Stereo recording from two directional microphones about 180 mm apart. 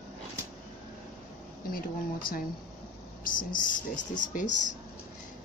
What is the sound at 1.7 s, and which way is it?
Speech, 50° left (ahead or behind).